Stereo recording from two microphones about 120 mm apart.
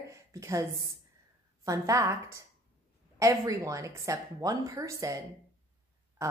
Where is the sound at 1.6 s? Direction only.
25° right (ahead or behind).